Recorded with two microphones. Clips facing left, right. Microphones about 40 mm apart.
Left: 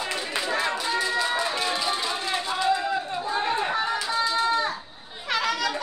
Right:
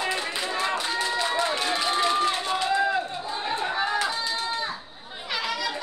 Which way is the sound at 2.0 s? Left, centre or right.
Right.